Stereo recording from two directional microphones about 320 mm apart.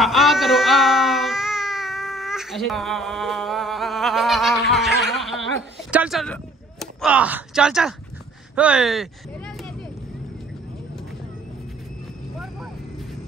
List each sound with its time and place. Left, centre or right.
0.0 s baby cry: centre
8.5 s speech: centre